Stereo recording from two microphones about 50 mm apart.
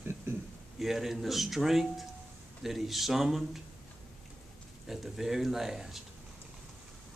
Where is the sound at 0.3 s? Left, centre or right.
Right.